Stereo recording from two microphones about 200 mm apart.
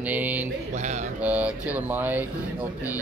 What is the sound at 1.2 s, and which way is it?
Speech, 10° right (ahead or behind).